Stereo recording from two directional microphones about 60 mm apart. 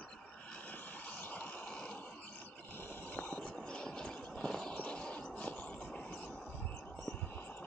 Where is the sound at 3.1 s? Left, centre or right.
Left.